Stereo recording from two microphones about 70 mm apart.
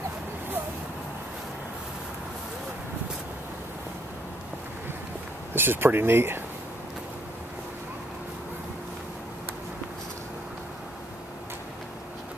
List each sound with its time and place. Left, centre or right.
5.5 s speech: right